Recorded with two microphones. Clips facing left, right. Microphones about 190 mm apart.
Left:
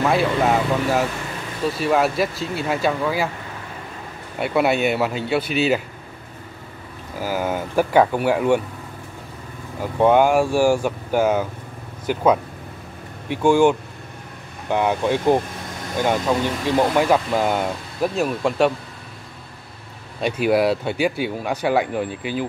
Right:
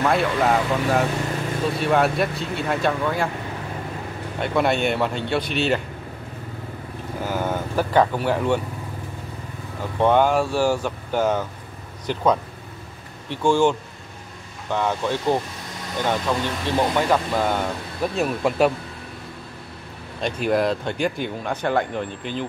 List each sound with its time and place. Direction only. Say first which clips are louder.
0.0 s speech: left 1 dB; centre (ahead or behind)
4.4 s speech: left 2 dB; 5° left (ahead or behind)
7.2 s speech: left 2 dB; 10° left (ahead or behind)
9.8 s speech: left 3 dB; 10° left (ahead or behind)
18.1 s speech: right 1 dB; centre (ahead or behind)
20.2 s speech: left 3 dB; 10° left (ahead or behind)